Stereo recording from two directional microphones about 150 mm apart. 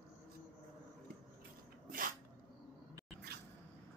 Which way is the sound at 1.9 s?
70° right (ahead or behind).